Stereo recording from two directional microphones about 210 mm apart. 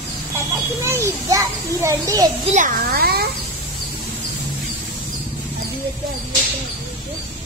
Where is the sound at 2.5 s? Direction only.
40° right (ahead or behind).